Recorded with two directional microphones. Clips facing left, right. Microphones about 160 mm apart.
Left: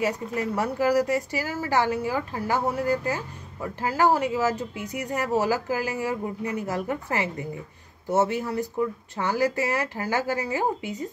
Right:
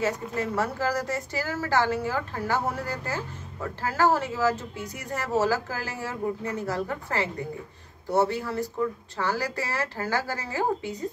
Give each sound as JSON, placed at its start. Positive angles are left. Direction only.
{"t": 0.0, "sound": "a woman's voice", "side_deg": 15}